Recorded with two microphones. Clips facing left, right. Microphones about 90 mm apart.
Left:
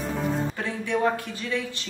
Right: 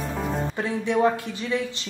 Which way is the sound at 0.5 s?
20° right (ahead or behind).